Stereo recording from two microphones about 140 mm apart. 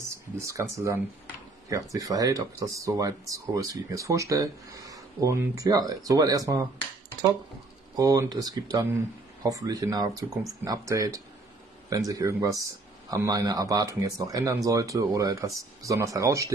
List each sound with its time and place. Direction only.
0.1 s speech: 20° right (ahead or behind)
7.9 s speech: 25° right (ahead or behind)